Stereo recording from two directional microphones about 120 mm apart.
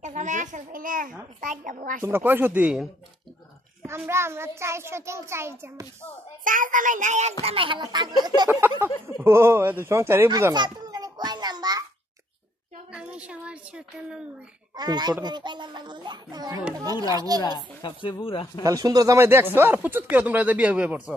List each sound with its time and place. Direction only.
0.0 s a sound: 90° right
1.4 s speech: 90° right
2.0 s speech: 20° right (ahead or behind)
3.8 s a child's voice: 20° right (ahead or behind)
6.4 s speech: 90° right
7.4 s a child's voice: 45° right (ahead or behind)
8.5 s a child's voice: 20° right (ahead or behind)
10.5 s a sound: 35° right (ahead or behind)
12.9 s speech: 10° right (ahead or behind)
14.8 s a child's voice: 35° right (ahead or behind)
17.4 s a woman's voice: 40° left (ahead or behind)
18.6 s speech: 30° right (ahead or behind); by 21.0 s 10° right (ahead or behind)